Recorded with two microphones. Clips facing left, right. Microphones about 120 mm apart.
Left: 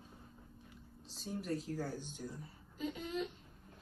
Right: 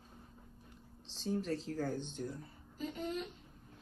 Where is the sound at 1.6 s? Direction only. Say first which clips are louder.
Right 3 dB; 10° left (ahead or behind).